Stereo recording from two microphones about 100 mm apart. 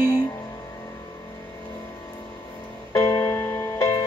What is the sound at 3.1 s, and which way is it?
Music, 25° left (ahead or behind).